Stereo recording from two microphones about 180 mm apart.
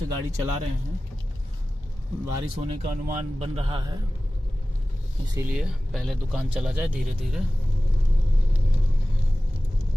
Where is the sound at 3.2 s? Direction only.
35° right (ahead or behind).